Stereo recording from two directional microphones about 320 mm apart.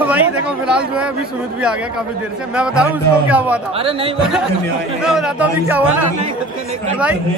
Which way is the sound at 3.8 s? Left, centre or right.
Centre.